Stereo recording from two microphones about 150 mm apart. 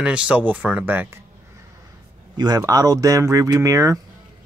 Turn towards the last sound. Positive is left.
turn(degrees=-20)  # may be behind; listen again after turning